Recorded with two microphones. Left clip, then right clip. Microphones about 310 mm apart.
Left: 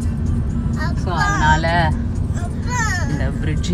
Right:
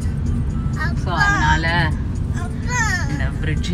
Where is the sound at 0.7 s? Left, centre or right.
Centre.